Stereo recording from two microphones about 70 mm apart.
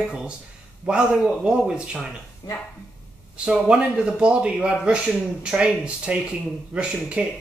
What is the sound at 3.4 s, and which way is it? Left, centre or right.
A man's voice, centre.